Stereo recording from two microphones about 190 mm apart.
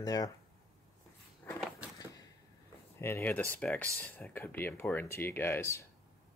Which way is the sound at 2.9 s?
10° left (ahead or behind).